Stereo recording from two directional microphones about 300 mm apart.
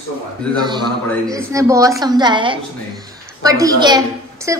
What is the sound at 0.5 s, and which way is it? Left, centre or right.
A woman's voice, centre.